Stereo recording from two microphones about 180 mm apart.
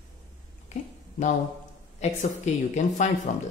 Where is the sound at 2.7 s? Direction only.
40° left (ahead or behind).